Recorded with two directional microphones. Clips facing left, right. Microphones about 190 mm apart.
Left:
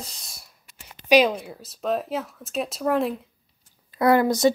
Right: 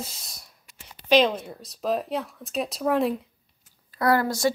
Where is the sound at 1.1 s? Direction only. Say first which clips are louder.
Left 2 dB; 10° left (ahead or behind).